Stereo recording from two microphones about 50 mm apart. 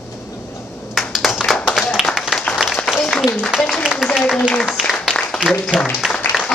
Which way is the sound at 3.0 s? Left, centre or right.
Centre.